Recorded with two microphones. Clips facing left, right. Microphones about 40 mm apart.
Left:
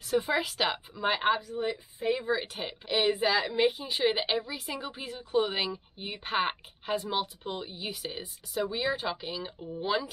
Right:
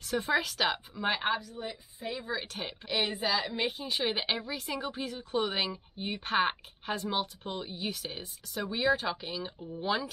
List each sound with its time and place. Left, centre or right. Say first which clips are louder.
0.0 s a woman's voice: left 1 dB; centre
1.6 s a woman's voice: left 7 dB; left
2.3 s a woman's voice: left 3 dB; centre
3.4 s a woman's voice: left 6 dB; centre